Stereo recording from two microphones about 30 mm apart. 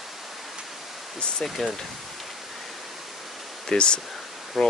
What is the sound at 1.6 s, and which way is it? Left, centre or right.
Speech, centre.